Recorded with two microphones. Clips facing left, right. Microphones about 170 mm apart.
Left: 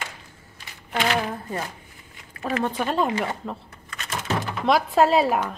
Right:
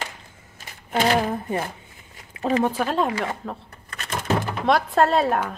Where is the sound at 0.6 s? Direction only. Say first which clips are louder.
Right 3 dB; 35° right (ahead or behind).